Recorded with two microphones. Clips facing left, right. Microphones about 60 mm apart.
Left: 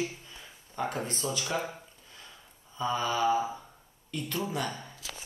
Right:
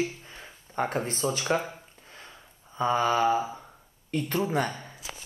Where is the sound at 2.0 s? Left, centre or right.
Right.